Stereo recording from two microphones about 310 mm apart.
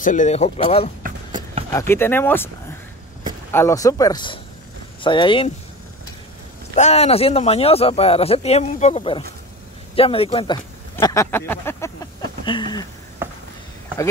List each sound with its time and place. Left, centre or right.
0.0 s speech: left
1.7 s speech: centre
3.5 s speech: centre
6.7 s speech: left
13.2 s a sound: centre